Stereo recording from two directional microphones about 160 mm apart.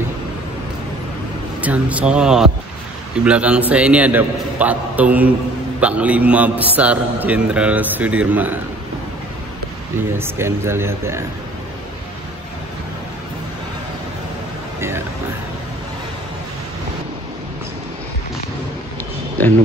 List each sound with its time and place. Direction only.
1.6 s a man's voice: 10° right (ahead or behind)
10.1 s a man's voice: 15° right (ahead or behind)
19.4 s speech: 10° left (ahead or behind)